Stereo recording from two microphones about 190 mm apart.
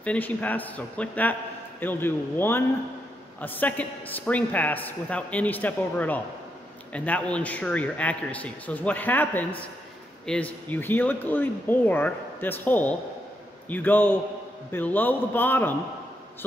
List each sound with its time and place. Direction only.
0.0 s speech: 10° left (ahead or behind)